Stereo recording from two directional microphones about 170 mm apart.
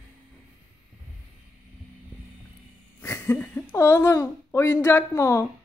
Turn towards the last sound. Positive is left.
turn(degrees=15)  # may be behind; listen again after turning